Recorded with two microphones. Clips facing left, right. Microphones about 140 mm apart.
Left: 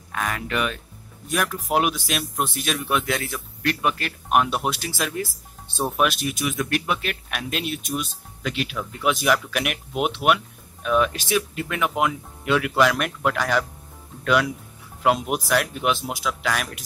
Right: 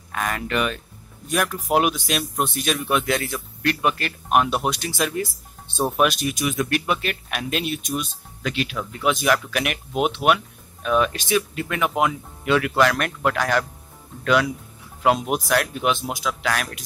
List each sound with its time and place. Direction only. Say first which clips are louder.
0.1 s speech: right 2 dB; centre (ahead or behind)